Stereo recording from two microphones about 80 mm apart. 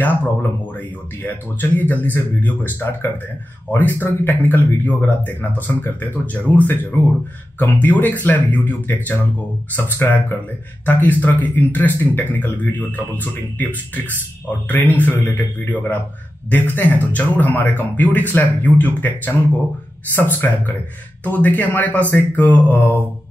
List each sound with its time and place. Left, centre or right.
0.0 s speech: left